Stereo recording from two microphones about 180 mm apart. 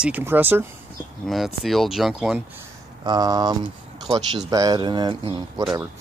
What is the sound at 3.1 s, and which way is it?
Speech, 20° right (ahead or behind).